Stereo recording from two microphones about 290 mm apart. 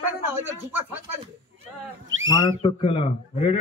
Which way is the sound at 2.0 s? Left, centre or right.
Right.